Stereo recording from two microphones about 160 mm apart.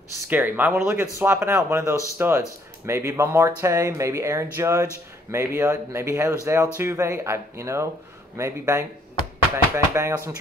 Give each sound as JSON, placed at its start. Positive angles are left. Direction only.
{"t": 0.3, "sound": "speech", "side_deg": -10}
{"t": 9.9, "sound": "speech", "side_deg": -20}